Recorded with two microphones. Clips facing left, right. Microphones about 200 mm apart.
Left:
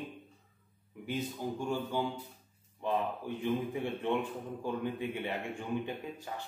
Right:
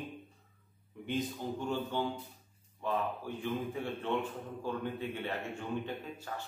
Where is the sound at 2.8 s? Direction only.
20° left (ahead or behind).